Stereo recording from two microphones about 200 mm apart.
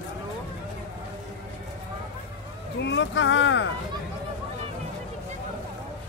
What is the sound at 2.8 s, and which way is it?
Speech, 65° left (ahead or behind).